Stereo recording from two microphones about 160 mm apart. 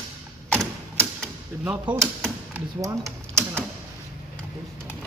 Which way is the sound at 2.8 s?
20° right (ahead or behind).